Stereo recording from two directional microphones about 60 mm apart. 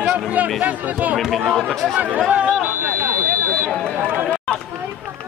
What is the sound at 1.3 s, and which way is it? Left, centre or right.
Speech, centre.